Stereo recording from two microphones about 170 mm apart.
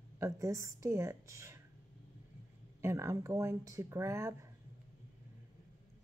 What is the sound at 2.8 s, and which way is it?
Speech, 15° right (ahead or behind).